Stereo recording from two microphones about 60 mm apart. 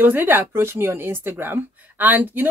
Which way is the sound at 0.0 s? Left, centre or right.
Right.